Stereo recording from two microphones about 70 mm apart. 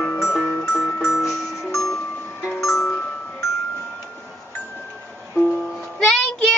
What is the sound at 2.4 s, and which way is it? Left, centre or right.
Music, left.